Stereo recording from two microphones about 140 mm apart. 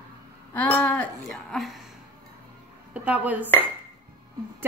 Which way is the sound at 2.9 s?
10° right (ahead or behind).